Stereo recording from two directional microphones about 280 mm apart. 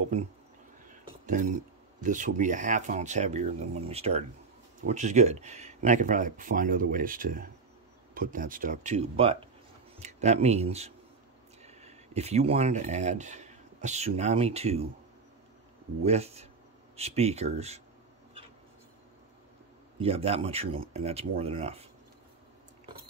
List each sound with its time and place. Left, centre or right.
1.2 s speech: right
16.0 s speech: right
20.0 s speech: right